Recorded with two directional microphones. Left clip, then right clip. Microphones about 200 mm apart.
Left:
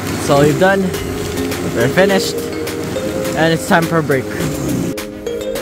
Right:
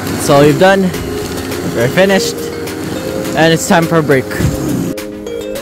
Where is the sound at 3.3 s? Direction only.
15° right (ahead or behind).